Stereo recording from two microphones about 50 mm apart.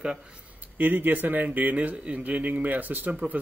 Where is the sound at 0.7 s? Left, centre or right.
Right.